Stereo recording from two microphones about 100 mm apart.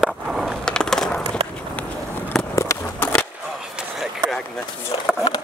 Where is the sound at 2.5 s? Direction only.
25° left (ahead or behind).